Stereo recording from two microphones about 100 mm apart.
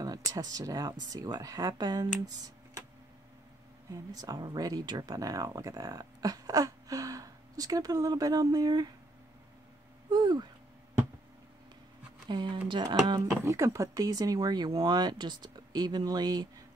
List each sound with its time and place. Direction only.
0.0 s speech: 40° right (ahead or behind)
3.9 s speech: 35° right (ahead or behind)
10.0 s speech: 45° right (ahead or behind)
12.3 s speech: 50° right (ahead or behind)
13.5 s speech: 30° right (ahead or behind)